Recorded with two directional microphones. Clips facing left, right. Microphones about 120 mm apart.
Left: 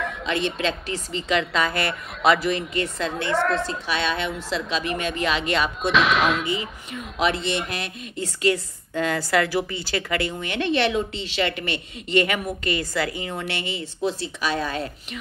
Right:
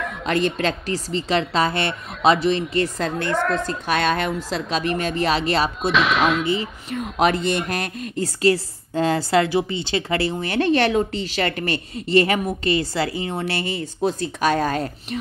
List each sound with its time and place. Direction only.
0.2 s a woman's voice: 45° right (ahead or behind); by 2.6 s 25° right (ahead or behind)
2.7 s a woman's voice: 35° right (ahead or behind)
3.3 s speech: 5° right (ahead or behind)
3.8 s a woman's voice: 50° right (ahead or behind)
5.8 s speech: centre (ahead or behind)
6.9 s a woman's voice: 45° right (ahead or behind)